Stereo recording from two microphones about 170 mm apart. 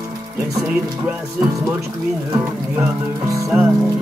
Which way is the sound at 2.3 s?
15° right (ahead or behind).